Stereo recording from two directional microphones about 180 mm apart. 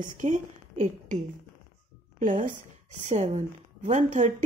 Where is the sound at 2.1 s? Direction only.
45° right (ahead or behind).